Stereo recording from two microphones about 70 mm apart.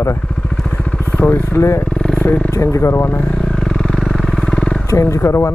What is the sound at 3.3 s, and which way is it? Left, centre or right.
Vehicle, centre.